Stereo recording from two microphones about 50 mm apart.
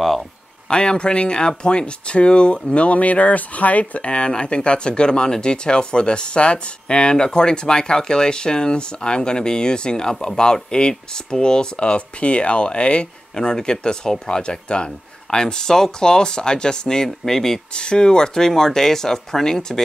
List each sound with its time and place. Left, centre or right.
0.7 s speech: centre